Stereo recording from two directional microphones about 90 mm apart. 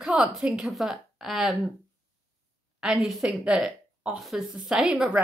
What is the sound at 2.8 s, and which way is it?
Speech, 5° right (ahead or behind).